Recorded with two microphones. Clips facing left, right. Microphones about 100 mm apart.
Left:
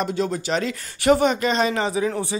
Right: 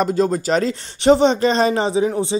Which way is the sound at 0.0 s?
40° right (ahead or behind).